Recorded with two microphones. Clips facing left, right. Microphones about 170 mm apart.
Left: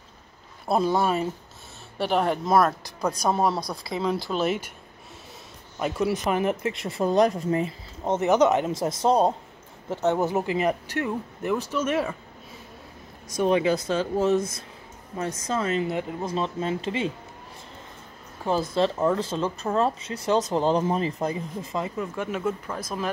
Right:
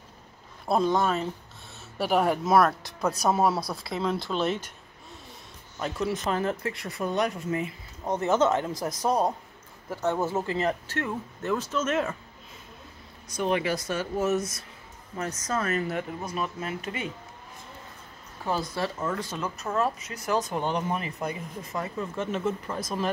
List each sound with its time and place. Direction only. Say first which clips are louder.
0.7 s speech: left 1 dB; 5° left (ahead or behind)
2.0 s speech: even; 5° right (ahead or behind)
5.8 s speech: left 4 dB; 15° left (ahead or behind)
13.4 s speech: left 5 dB; 20° left (ahead or behind)
15.1 s speech: left 2 dB; 20° left (ahead or behind)
18.4 s speech: left 6 dB; 20° left (ahead or behind)
21.9 s speech: left 1 dB; 10° left (ahead or behind)